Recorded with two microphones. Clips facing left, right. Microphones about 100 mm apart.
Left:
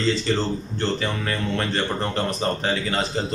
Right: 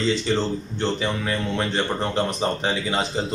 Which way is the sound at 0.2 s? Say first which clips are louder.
Even; 15° right (ahead or behind).